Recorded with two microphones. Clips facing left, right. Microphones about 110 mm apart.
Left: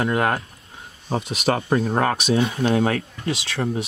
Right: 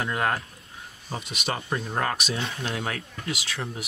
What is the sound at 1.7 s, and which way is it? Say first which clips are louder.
Speech: left 10 dB; 55° left (ahead or behind).